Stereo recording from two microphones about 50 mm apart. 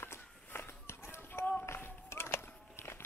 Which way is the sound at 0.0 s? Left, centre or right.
Left.